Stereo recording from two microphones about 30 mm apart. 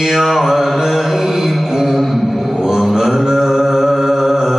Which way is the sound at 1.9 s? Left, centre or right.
Centre.